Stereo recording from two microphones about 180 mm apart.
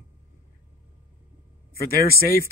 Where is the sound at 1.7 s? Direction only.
55° left (ahead or behind).